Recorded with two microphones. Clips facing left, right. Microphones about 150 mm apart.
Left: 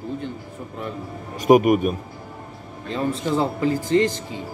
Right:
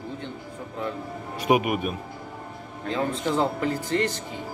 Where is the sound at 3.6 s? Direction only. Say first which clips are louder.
Left 6 dB; 65° right (ahead or behind).